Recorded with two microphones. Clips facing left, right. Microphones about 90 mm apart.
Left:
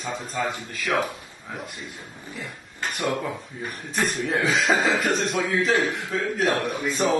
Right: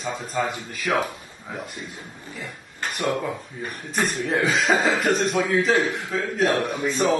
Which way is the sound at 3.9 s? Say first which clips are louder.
Right 1 dB; centre (ahead or behind).